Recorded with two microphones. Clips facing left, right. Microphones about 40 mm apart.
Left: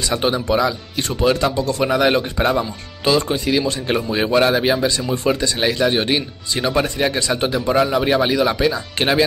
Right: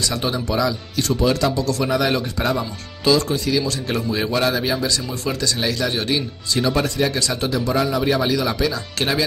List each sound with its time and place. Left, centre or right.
0.1 s speech: left